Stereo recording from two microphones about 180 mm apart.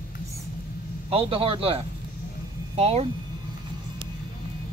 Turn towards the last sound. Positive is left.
turn(degrees=-35)  # may be behind; listen again after turning